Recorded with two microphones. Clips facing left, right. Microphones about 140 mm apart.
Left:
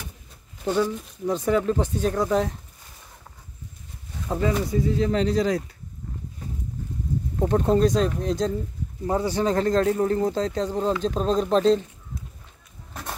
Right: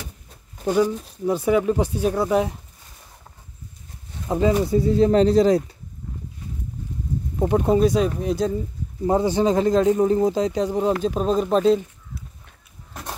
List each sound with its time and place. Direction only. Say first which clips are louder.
0.7 s speech: right 4 dB; 10° right (ahead or behind)
4.3 s speech: right 5 dB; 20° right (ahead or behind)
7.3 s speech: right 2 dB; 10° right (ahead or behind)
9.0 s speech: right 4 dB; 20° right (ahead or behind); by 11.8 s 5° right (ahead or behind)